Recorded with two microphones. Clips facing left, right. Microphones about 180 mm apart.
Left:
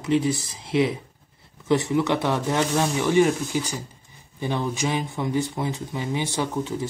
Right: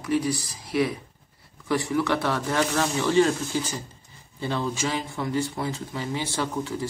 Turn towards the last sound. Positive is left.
turn(degrees=20)  # may be behind; listen again after turning